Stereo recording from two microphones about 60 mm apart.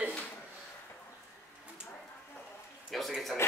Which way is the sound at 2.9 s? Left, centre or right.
Centre.